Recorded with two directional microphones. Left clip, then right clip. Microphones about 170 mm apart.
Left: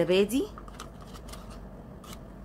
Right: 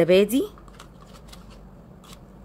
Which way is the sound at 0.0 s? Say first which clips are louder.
Right 7 dB; 30° right (ahead or behind).